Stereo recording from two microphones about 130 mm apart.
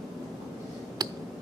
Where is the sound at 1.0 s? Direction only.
30° right (ahead or behind).